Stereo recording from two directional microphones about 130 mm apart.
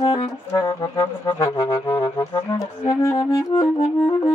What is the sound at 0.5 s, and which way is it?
Music, 30° left (ahead or behind).